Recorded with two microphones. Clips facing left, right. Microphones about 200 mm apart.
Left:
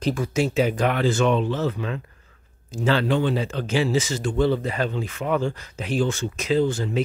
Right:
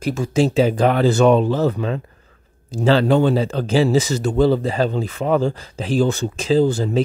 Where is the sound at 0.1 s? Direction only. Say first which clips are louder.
Right 6 dB; 30° right (ahead or behind).